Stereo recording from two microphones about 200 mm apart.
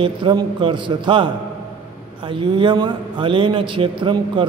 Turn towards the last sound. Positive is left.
turn(degrees=-25)  # may be behind; listen again after turning